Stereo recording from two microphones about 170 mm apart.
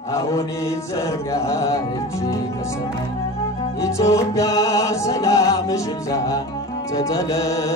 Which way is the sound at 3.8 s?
20° left (ahead or behind).